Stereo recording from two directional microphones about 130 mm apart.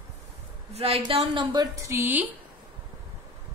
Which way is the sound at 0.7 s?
50° right (ahead or behind).